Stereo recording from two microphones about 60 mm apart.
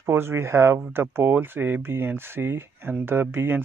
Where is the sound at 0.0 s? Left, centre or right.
Right.